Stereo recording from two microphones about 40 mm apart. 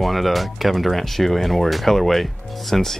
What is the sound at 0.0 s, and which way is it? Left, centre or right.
Speech, centre.